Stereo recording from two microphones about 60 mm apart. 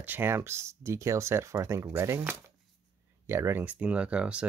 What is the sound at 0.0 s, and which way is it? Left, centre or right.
Speech, right.